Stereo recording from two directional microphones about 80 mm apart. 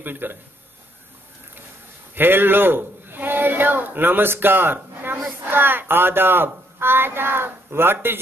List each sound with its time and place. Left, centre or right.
0.0 s a man's voice: right
2.1 s a man's voice: right